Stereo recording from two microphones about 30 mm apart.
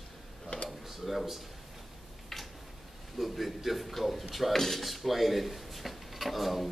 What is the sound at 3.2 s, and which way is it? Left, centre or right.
A man's voice, centre.